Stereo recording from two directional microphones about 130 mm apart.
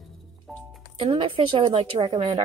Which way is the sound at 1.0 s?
40° right (ahead or behind).